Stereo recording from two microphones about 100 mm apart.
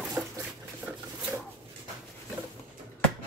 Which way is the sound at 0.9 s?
15° right (ahead or behind).